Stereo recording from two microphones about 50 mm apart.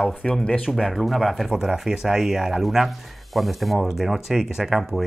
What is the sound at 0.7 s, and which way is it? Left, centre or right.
Speech, centre.